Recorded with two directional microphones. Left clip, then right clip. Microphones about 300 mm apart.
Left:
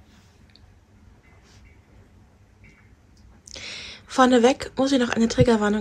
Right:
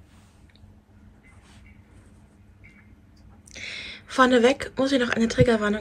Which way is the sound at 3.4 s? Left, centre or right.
Centre.